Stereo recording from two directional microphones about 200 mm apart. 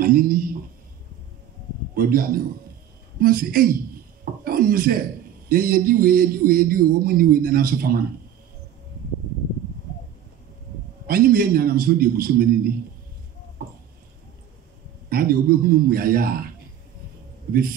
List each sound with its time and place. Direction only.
0.0 s a man's voice: 45° right (ahead or behind)
2.0 s a man's voice: 45° right (ahead or behind)
11.1 s a man's voice: 45° right (ahead or behind)
13.6 s chicken: 45° right (ahead or behind)
15.0 s a man's voice: 45° right (ahead or behind)